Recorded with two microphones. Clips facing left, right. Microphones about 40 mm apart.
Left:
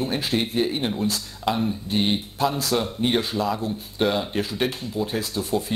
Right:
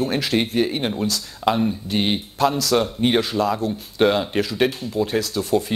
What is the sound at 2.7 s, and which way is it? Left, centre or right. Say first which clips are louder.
Speech: right 4 dB; right.